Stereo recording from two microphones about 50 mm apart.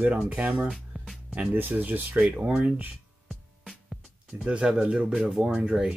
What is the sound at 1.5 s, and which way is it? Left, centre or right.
Speech, right.